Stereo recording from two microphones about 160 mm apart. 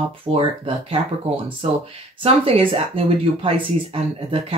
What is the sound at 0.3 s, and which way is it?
Speech, 25° right (ahead or behind).